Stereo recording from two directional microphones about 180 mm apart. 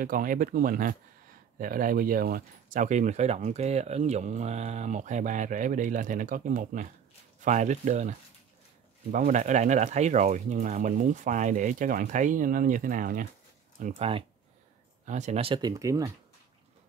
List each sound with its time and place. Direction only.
0.0 s speech: 50° right (ahead or behind); by 16.1 s 20° right (ahead or behind)